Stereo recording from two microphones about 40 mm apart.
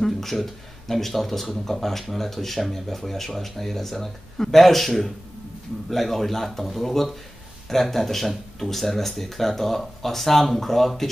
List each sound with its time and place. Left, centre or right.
0.0 s speech: centre